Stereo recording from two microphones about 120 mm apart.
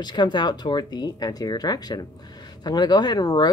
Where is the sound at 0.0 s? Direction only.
40° left (ahead or behind).